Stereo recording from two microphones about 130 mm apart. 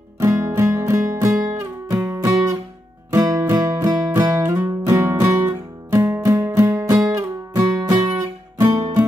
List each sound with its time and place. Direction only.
0.2 s music: 20° right (ahead or behind)